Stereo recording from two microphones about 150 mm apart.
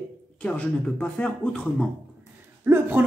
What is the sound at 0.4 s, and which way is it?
Speech, 10° left (ahead or behind).